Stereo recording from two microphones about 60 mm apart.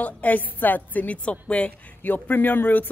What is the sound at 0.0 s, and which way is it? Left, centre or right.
A woman's voice, left.